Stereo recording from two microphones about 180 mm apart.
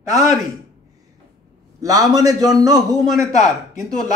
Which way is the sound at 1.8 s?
20° right (ahead or behind).